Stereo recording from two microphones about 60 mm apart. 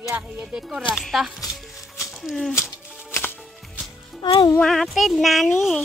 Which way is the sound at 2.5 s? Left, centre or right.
Left.